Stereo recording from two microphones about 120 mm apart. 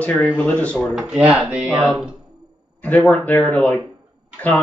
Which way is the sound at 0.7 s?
5° right (ahead or behind).